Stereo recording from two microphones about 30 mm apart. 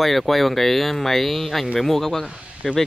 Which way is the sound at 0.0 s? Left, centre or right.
Centre.